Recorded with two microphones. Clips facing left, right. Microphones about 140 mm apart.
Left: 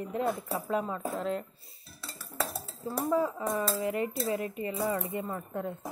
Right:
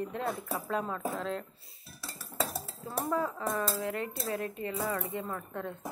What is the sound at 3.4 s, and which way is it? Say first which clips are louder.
Speech: left 2 dB; 20° left (ahead or behind).